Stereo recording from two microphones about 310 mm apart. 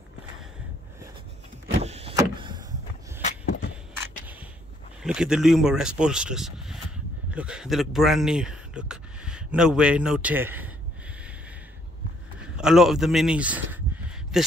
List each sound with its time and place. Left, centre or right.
1.8 s power windows: centre
3.2 s a sound: left
5.0 s speech: centre
12.5 s speech: centre